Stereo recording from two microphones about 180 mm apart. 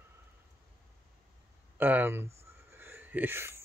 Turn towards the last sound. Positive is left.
turn(degrees=-15)  # may be behind; listen again after turning